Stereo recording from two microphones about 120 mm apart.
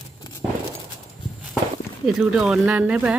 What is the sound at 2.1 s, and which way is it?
Speech, 5° right (ahead or behind).